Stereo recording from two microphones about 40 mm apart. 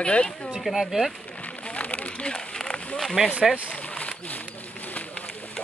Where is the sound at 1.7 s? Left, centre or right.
Left.